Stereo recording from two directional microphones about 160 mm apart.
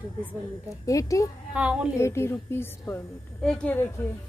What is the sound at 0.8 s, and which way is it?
Speech, 20° left (ahead or behind).